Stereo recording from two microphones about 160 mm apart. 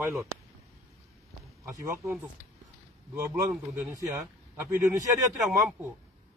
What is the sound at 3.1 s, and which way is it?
Speech, 15° right (ahead or behind).